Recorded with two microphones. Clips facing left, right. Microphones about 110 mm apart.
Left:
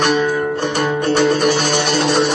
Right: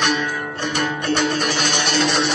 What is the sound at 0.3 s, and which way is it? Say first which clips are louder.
Music: left 7 dB; 45° left (ahead or behind).